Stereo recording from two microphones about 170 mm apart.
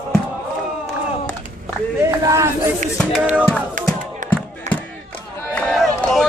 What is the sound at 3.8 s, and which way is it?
Music, 50° right (ahead or behind).